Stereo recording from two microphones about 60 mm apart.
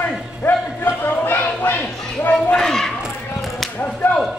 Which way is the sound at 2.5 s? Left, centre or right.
Centre.